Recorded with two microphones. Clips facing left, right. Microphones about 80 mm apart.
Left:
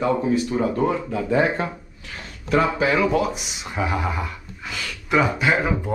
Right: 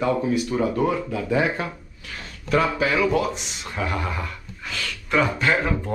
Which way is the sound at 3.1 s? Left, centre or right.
Centre.